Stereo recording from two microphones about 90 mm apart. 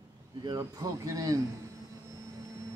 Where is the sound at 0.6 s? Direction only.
40° right (ahead or behind).